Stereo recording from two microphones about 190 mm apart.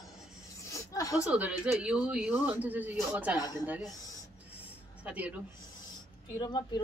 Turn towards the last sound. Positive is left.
turn(degrees=20)  # may be behind; listen again after turning